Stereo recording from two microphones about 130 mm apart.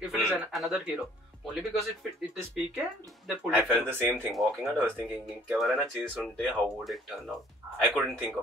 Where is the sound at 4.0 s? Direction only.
15° right (ahead or behind).